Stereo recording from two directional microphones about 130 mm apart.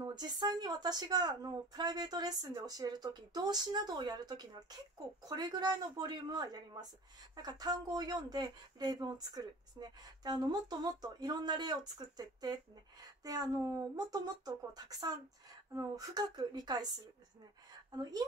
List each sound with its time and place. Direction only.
0.0 s speech: 30° right (ahead or behind)
17.9 s speech: 30° right (ahead or behind)